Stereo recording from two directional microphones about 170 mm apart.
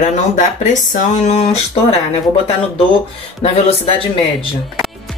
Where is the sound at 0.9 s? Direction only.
40° left (ahead or behind).